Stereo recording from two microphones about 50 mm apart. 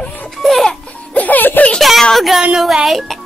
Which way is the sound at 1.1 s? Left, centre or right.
Left.